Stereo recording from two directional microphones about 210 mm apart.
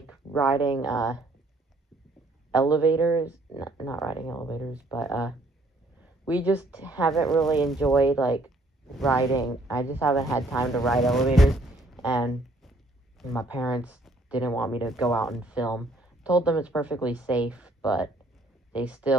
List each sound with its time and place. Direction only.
0.1 s a sound: 5° right (ahead or behind)
0.6 s speech: 20° left (ahead or behind)
2.7 s speech: 5° right (ahead or behind)
4.1 s speech: 20° left (ahead or behind)
4.7 s speech: 5° right (ahead or behind)
6.2 s speech: 5° right (ahead or behind)
9.7 s speech: 10° right (ahead or behind)